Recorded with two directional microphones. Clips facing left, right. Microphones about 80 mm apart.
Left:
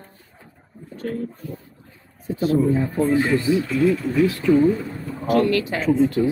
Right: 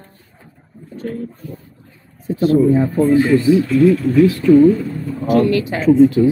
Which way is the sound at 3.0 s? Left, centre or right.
Centre.